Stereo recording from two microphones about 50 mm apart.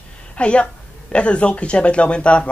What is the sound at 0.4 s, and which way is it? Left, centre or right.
Speech, left.